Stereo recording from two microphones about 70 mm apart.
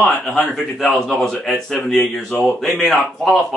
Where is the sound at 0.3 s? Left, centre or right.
Centre.